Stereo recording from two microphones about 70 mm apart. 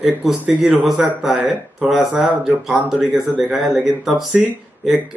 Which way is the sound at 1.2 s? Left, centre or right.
Centre.